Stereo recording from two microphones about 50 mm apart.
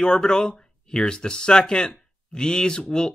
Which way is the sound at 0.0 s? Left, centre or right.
Centre.